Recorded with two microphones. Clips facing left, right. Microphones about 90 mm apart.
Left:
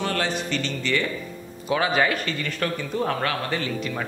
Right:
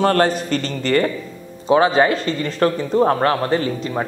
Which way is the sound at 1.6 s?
30° right (ahead or behind).